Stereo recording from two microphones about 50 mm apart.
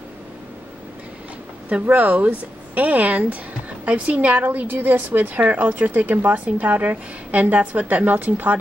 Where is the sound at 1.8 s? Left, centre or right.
Right.